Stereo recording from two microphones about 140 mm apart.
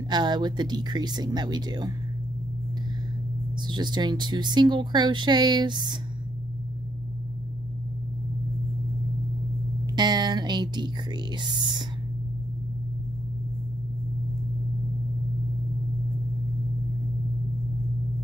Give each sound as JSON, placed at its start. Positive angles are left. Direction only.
{"t": 0.1, "sound": "speech", "side_deg": -30}
{"t": 3.6, "sound": "speech", "side_deg": -35}
{"t": 9.9, "sound": "a sound", "side_deg": -30}
{"t": 11.3, "sound": "speech", "side_deg": -30}